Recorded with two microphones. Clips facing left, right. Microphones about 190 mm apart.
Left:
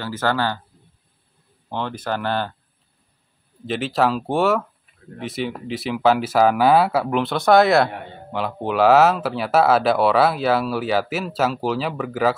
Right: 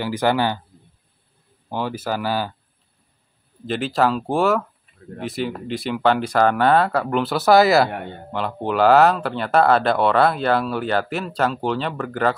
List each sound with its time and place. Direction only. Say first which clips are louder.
0.0 s speech: right 3 dB; 15° right (ahead or behind)
1.7 s speech: right 1 dB; 10° right (ahead or behind)
3.6 s speech: even; centre (ahead or behind)